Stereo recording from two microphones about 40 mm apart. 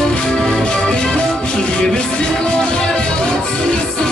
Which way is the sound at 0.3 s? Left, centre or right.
Centre.